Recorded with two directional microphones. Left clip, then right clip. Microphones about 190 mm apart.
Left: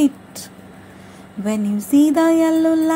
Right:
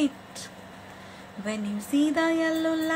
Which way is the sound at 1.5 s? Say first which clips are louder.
Left 10 dB; 25° left (ahead or behind).